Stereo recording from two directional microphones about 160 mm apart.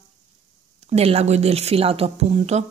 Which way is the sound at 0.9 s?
40° right (ahead or behind).